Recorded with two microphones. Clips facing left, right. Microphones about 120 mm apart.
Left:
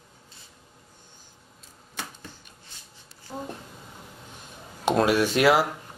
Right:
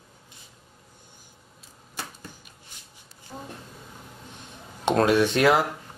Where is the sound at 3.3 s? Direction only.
20° left (ahead or behind).